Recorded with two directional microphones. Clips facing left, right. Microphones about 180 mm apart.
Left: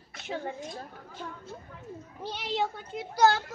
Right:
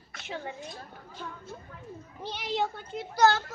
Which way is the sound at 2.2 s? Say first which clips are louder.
Even; 5° left (ahead or behind).